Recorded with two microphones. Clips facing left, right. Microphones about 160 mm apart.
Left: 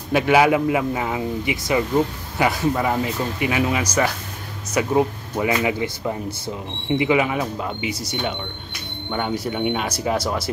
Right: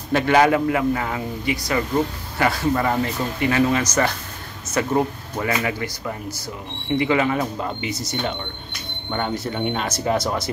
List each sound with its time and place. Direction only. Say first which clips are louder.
0.1 s speech: even; 10° left (ahead or behind)